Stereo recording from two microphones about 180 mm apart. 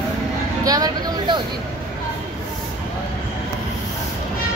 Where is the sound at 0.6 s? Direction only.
20° right (ahead or behind).